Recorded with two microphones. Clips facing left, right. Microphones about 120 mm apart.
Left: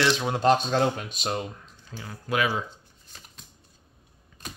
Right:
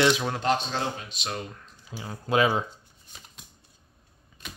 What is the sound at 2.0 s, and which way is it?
Speech, 25° right (ahead or behind).